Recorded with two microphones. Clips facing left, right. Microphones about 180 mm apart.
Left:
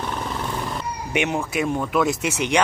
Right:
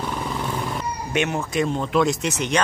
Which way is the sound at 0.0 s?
5° right (ahead or behind).